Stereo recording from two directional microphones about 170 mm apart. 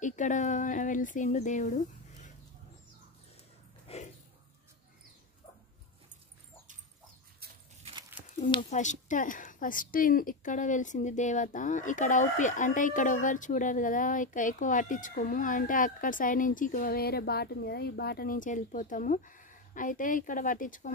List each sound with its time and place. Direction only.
0.0 s speech: 45° left (ahead or behind)
3.8 s a sound: 40° left (ahead or behind)
8.5 s speech: 45° left (ahead or behind)